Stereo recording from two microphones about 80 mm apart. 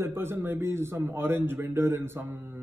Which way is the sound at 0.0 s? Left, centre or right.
Right.